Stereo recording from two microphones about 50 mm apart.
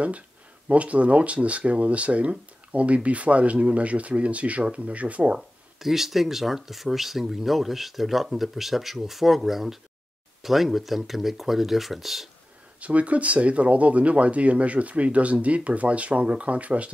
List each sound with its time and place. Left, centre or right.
0.7 s speech: right
5.8 s speech: centre
12.8 s speech: right